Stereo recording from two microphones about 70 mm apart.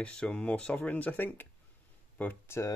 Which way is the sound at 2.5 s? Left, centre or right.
Left.